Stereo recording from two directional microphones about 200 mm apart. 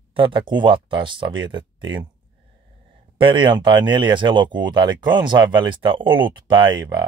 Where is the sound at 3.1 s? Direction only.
25° right (ahead or behind).